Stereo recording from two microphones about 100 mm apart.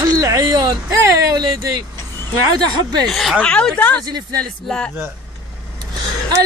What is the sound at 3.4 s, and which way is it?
Speech, 10° left (ahead or behind).